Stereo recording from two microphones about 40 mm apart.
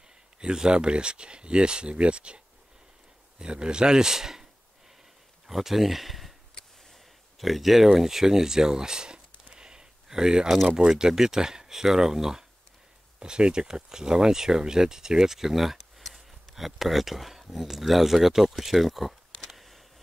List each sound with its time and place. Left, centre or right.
0.4 s speech: right
5.5 s speech: centre
7.3 s speech: centre